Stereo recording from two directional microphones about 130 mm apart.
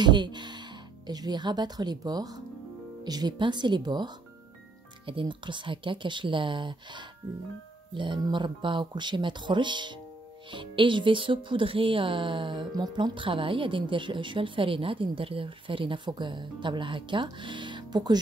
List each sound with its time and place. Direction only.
0.0 s speech: 35° right (ahead or behind)